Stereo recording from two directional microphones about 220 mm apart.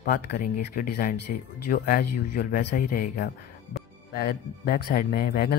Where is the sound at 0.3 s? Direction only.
40° left (ahead or behind).